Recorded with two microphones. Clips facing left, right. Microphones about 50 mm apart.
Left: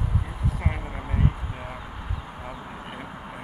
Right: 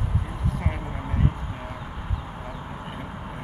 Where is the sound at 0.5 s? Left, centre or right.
Centre.